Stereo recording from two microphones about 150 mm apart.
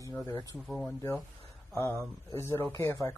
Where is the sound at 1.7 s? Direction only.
15° left (ahead or behind).